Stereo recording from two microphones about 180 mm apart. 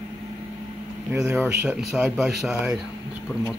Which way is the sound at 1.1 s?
15° right (ahead or behind).